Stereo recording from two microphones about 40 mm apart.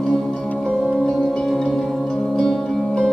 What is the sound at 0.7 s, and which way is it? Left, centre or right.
Music, centre.